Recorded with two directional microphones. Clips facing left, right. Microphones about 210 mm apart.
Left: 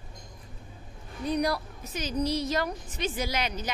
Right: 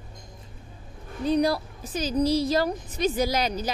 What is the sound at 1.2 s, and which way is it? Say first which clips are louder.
A woman's voice: right 5 dB; 30° right (ahead or behind).